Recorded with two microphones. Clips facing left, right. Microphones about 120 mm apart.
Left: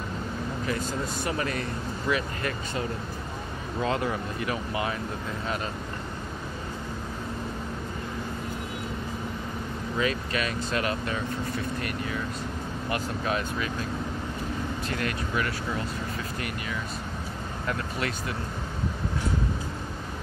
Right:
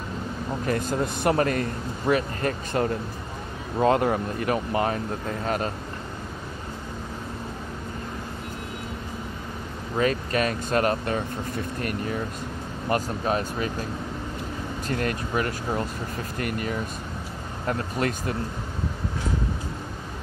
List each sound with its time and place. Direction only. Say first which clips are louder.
0.7 s speech: right 6 dB; 55° right (ahead or behind)
9.9 s speech: right 5 dB; 45° right (ahead or behind)
14.9 s speech: right 7 dB; 40° right (ahead or behind)